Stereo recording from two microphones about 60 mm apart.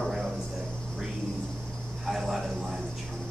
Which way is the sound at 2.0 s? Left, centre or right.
Centre.